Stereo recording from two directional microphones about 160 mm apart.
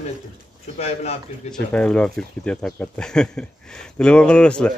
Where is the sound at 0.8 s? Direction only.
40° left (ahead or behind).